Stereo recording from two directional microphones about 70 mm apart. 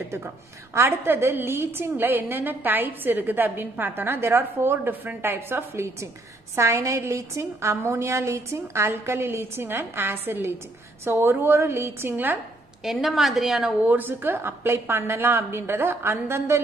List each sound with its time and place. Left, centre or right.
0.7 s a woman's voice: right
12.8 s a woman's voice: centre
13.8 s a woman's voice: right